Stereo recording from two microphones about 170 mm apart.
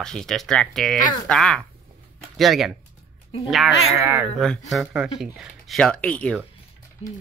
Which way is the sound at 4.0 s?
10° right (ahead or behind).